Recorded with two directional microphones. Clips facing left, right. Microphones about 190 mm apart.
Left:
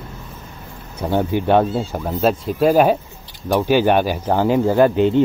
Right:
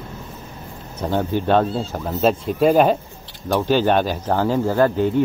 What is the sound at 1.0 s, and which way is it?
Speech, 15° left (ahead or behind).